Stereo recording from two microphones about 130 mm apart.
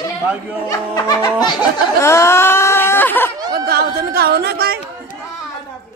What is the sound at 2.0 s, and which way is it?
Speech, 20° left (ahead or behind).